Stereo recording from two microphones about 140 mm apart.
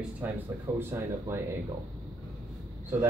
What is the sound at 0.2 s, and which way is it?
Speech, 15° right (ahead or behind).